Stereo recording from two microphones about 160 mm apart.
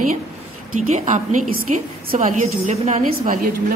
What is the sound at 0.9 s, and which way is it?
A woman's voice, 50° right (ahead or behind).